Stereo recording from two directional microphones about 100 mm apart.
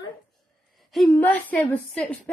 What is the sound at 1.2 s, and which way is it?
A woman's voice, 15° left (ahead or behind).